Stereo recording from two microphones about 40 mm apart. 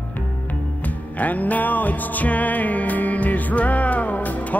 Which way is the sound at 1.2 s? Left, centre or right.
Left.